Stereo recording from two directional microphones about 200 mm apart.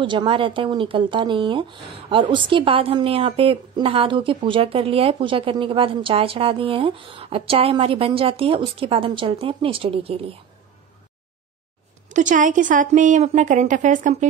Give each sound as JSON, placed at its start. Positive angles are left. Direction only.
{"t": 0.0, "sound": "speech", "side_deg": -25}
{"t": 12.1, "sound": "a woman's voice", "side_deg": -40}